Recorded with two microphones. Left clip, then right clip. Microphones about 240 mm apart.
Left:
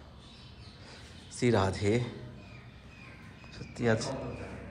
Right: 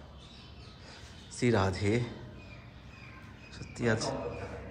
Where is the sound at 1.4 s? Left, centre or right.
Centre.